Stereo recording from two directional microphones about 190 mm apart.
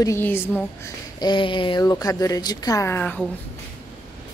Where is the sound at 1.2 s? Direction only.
25° left (ahead or behind); by 3.2 s 10° left (ahead or behind).